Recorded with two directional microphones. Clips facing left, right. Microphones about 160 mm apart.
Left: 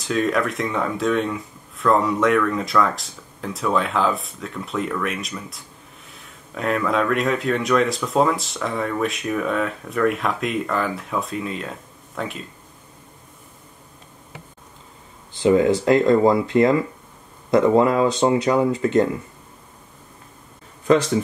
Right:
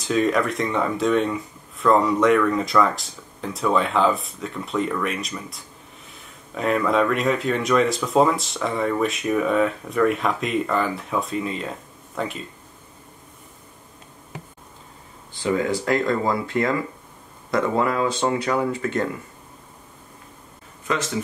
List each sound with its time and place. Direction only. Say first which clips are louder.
0.0 s speech: right 1 dB; centre (ahead or behind)
15.4 s speech: left 6 dB; 20° left (ahead or behind)